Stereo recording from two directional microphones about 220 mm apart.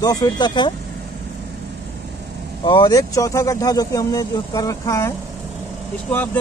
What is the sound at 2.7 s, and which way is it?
Speech, 20° left (ahead or behind).